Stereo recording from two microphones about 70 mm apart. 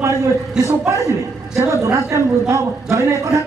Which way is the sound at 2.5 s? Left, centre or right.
Right.